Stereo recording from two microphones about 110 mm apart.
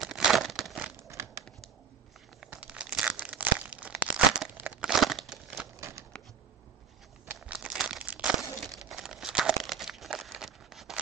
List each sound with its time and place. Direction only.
0.0 s crumpling: centre (ahead or behind)
1.0 s crumpling: 25° right (ahead or behind)
2.4 s tearing: 10° right (ahead or behind)
4.6 s crumpling: 10° right (ahead or behind)
5.8 s scissors: 25° right (ahead or behind)
7.4 s crumpling: 10° right (ahead or behind)